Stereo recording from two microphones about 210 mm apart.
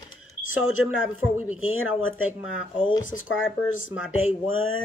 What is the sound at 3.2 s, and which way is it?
Speech, 70° left (ahead or behind).